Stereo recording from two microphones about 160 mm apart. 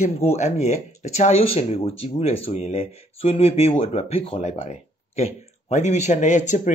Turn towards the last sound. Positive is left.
turn(degrees=50)  # may be behind; listen again after turning